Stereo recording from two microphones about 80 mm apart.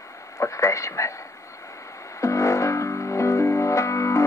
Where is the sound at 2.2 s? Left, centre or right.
Left.